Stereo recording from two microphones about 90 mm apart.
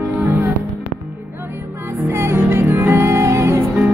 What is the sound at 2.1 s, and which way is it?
Music, 25° right (ahead or behind).